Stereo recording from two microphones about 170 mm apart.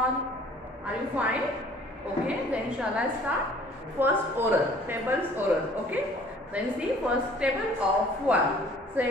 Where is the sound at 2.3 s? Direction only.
5° right (ahead or behind).